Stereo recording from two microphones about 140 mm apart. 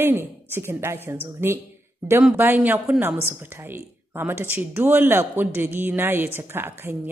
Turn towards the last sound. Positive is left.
turn(degrees=-15)  # may be behind; listen again after turning